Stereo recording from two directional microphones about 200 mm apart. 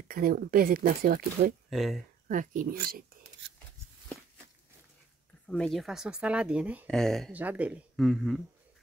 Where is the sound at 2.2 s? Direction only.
40° right (ahead or behind).